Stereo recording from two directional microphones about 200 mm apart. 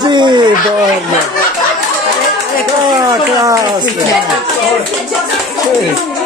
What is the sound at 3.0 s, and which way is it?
Speech, 20° right (ahead or behind).